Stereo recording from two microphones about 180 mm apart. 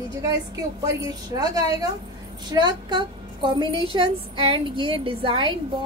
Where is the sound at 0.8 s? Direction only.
20° right (ahead or behind).